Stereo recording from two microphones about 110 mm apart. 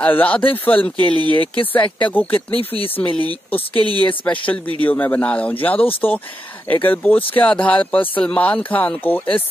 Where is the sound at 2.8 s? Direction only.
20° left (ahead or behind).